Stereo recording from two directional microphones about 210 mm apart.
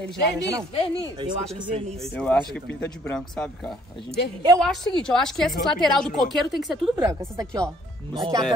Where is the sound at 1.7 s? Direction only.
30° right (ahead or behind).